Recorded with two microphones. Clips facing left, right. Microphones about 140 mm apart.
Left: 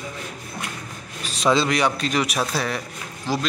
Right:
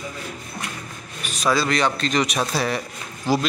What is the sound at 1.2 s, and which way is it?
A man's voice, 30° left (ahead or behind).